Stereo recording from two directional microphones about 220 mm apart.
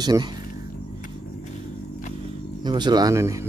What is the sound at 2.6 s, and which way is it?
Speech, 20° right (ahead or behind).